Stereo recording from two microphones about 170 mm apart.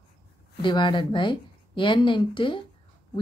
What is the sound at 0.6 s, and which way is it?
Speech, 30° left (ahead or behind).